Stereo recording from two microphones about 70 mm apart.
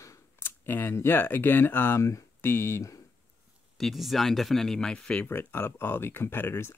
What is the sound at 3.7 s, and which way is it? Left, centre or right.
Speech, centre.